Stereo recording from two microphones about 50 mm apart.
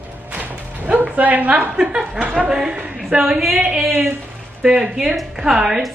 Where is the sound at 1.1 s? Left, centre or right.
Right.